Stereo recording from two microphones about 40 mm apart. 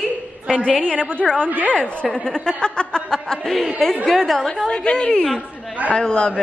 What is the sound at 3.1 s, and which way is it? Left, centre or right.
Chuckle, centre.